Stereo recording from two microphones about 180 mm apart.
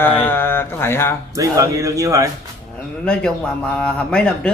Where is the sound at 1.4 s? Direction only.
15° right (ahead or behind).